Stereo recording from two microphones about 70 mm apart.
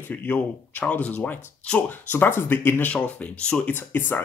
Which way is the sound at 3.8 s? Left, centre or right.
Left.